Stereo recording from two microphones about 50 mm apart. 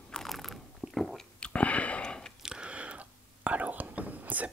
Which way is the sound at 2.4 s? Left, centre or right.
Centre.